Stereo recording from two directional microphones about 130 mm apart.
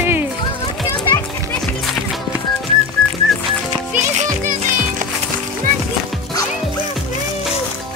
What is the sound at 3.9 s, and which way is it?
Music, 70° right (ahead or behind).